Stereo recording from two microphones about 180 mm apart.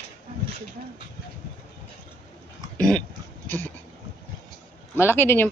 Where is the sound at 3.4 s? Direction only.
10° left (ahead or behind).